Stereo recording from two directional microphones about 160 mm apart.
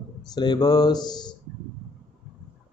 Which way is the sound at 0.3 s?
25° left (ahead or behind).